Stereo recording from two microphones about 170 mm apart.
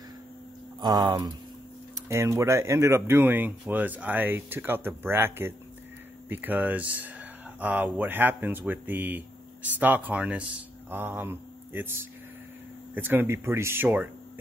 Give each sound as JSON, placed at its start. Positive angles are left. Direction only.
{"t": 0.7, "sound": "speech", "side_deg": -25}